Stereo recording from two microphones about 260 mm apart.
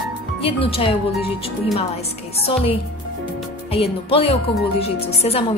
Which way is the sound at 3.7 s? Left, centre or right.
Left.